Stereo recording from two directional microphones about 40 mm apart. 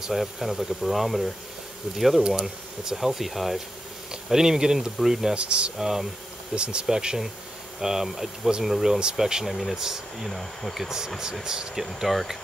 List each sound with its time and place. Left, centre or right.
0.1 s speech: centre
4.1 s speech: centre
5.3 s speech: right
5.8 s speech: centre
6.5 s speech: right; by 12.4 s centre